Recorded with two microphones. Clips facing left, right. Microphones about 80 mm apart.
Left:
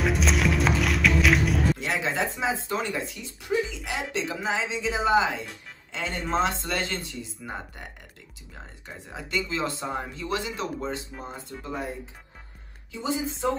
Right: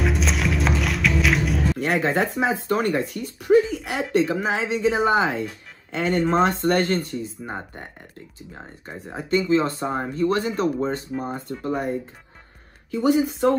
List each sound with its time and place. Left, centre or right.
0.0 s music: centre
1.8 s speech: right
7.4 s speech: right
9.5 s speech: right
11.2 s speech: right
12.9 s speech: right